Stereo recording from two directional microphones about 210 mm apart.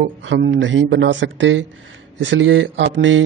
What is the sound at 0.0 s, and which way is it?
Speech, 60° right (ahead or behind).